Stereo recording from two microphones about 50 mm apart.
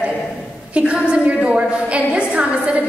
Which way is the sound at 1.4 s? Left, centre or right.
Right.